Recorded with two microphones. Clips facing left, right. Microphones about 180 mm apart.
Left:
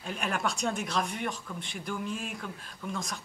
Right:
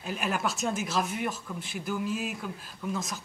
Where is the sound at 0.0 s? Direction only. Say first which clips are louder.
Right 2 dB; 5° right (ahead or behind).